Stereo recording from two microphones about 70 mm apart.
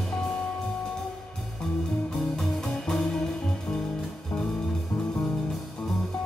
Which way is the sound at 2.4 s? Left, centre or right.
Centre.